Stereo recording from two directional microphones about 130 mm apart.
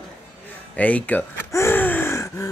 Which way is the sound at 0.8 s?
10° left (ahead or behind).